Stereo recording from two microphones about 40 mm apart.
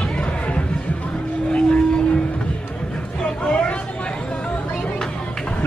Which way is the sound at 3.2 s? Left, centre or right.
Left.